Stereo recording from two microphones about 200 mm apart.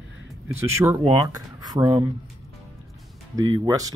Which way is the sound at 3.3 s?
20° right (ahead or behind).